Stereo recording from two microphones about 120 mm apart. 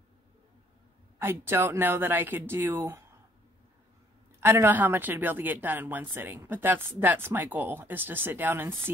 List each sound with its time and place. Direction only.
1.2 s speech: 20° right (ahead or behind)
4.4 s speech: 20° right (ahead or behind)